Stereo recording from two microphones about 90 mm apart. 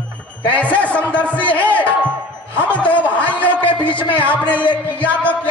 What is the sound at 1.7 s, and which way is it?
Music, 15° left (ahead or behind).